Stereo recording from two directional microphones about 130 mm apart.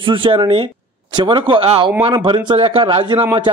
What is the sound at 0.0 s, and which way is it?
A man's voice, 40° right (ahead or behind).